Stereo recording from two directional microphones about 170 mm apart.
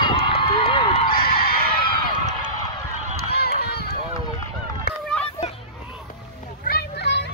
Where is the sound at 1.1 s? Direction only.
60° left (ahead or behind).